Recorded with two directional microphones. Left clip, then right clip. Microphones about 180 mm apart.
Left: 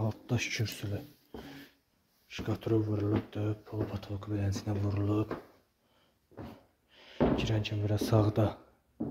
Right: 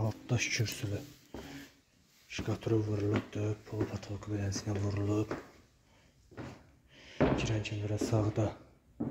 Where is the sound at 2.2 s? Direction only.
Centre (ahead or behind).